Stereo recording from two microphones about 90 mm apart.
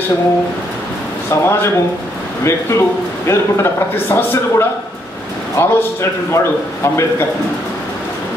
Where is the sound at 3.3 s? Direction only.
30° left (ahead or behind).